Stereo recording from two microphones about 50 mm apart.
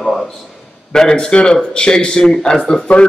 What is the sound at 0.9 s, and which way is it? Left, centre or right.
Speech, centre.